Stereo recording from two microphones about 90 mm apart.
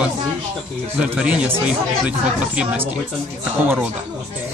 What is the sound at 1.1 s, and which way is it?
Speech, 15° right (ahead or behind).